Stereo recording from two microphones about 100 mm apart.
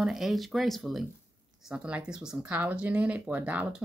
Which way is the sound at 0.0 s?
5° right (ahead or behind).